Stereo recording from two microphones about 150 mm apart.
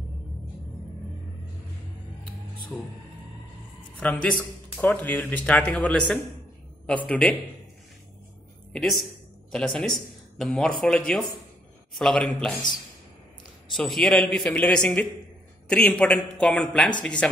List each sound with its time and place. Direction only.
2.7 s a man's voice: 10° left (ahead or behind)
4.0 s a man's voice: 10° left (ahead or behind)
8.7 s a man's voice: centre (ahead or behind)
13.7 s a man's voice: centre (ahead or behind)